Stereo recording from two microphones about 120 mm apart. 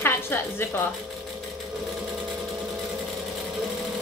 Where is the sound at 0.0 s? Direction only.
20° left (ahead or behind).